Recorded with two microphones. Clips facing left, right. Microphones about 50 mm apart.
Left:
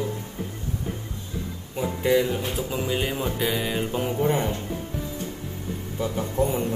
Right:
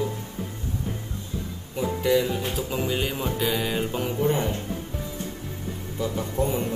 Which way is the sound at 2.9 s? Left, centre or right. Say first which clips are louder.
Left 1 dB; centre.